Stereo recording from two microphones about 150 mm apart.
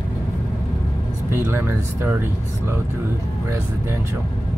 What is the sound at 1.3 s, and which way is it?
Speech, 15° right (ahead or behind).